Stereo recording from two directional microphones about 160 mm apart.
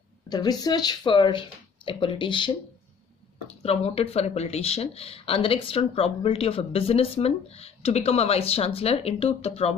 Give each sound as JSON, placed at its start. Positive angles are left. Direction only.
{"t": 0.3, "sound": "speech", "side_deg": 25}
{"t": 3.6, "sound": "speech", "side_deg": 40}